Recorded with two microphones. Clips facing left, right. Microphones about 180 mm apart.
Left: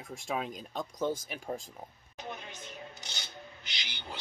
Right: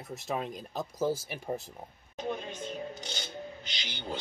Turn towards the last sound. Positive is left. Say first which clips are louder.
# right 7 dB
turn(degrees=-50)  # may be behind; listen again after turning